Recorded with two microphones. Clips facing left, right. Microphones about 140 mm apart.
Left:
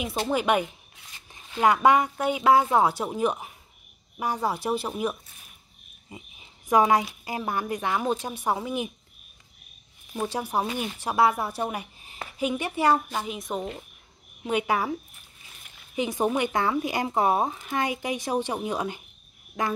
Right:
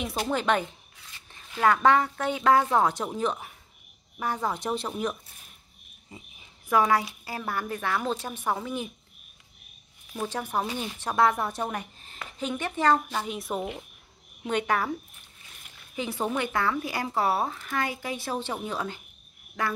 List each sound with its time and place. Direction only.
0.3 s speech: 10° left (ahead or behind)
10.2 s speech: 10° left (ahead or behind)
11.6 s a sound: 10° left (ahead or behind)
12.4 s speech: 10° left (ahead or behind)
13.2 s speech: centre (ahead or behind)
14.4 s speech: 5° left (ahead or behind)
16.0 s speech: 15° left (ahead or behind)
19.6 s frog: 20° left (ahead or behind)